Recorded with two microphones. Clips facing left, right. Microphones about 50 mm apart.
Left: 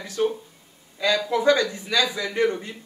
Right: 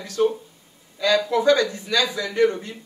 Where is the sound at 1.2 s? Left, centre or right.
Centre.